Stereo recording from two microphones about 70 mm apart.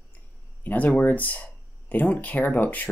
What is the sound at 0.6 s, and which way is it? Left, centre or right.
Speech, left.